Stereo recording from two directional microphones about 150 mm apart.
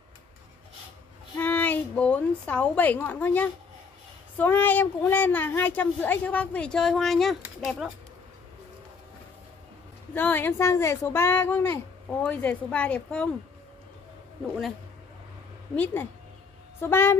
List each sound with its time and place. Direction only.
1.4 s a sound: 10° left (ahead or behind)
4.4 s speech: 10° left (ahead or behind)
10.1 s speech: 15° left (ahead or behind)
15.7 s speech: 10° left (ahead or behind)